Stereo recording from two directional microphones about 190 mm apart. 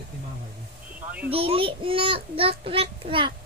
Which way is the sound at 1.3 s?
30° right (ahead or behind).